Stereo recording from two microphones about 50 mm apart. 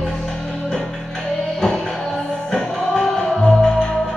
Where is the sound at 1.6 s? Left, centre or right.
Centre.